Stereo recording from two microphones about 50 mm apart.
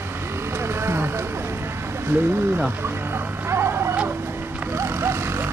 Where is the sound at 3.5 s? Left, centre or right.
Right.